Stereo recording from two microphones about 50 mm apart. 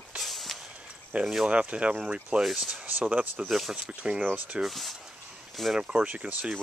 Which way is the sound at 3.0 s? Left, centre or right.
Right.